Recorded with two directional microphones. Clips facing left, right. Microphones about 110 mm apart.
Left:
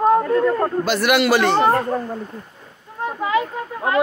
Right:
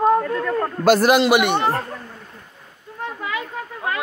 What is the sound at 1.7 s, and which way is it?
Cat, 45° left (ahead or behind).